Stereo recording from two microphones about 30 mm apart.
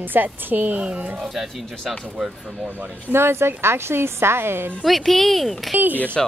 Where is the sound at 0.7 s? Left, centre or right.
Right.